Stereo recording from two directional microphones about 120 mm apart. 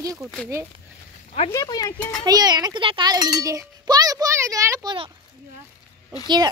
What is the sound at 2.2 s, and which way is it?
A child's voice, 35° right (ahead or behind).